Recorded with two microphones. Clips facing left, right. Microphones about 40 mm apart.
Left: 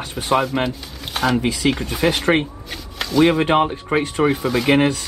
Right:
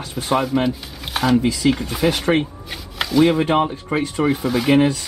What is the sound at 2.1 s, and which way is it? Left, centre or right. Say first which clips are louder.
Speech: even; left.